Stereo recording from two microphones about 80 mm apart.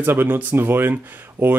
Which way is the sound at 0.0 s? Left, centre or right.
Right.